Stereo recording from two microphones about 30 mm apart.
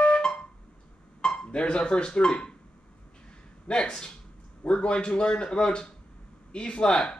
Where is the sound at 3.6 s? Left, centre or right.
Left.